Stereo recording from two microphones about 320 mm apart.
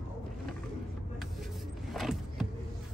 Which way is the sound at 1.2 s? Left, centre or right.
Centre.